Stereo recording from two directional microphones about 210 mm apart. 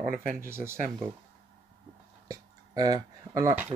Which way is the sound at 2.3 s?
20° right (ahead or behind).